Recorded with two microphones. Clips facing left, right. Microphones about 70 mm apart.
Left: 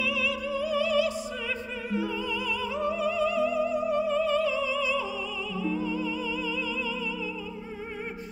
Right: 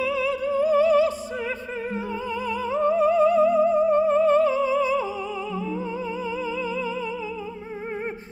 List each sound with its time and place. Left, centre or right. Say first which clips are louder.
0.0 s music: right 5 dB; right
2.7 s music: right 10 dB; right